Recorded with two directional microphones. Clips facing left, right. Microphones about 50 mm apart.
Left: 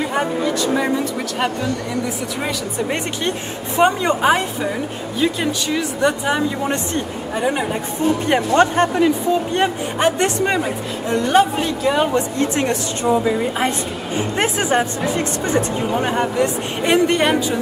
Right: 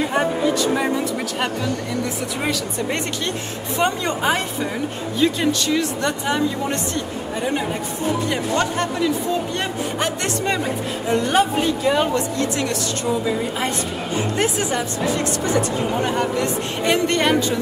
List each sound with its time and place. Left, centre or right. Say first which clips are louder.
2.9 s speech: left 2 dB; left
6.7 s speech: left 2 dB; left
8.3 s speech: left 6 dB; left
11.1 s a woman's voice: left 3 dB; centre
12.4 s a woman's voice: left 3 dB; left